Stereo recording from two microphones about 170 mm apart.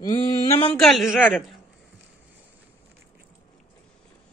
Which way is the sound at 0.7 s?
Centre (ahead or behind).